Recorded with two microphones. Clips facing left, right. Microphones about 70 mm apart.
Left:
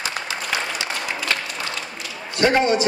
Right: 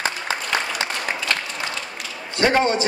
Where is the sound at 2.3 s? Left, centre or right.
Right.